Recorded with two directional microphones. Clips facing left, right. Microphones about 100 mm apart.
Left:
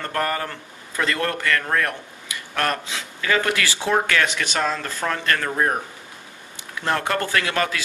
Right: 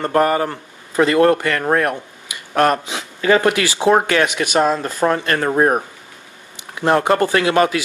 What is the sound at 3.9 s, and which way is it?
Speech, 30° right (ahead or behind).